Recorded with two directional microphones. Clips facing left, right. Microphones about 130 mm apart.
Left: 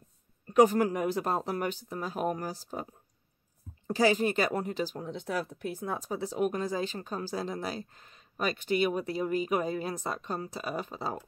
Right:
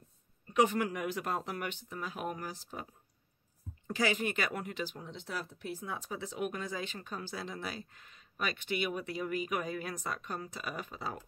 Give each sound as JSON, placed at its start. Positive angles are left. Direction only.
{"t": 0.5, "sound": "speech", "side_deg": 40}